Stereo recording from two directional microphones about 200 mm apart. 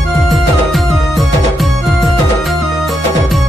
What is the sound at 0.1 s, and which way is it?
Music, centre (ahead or behind).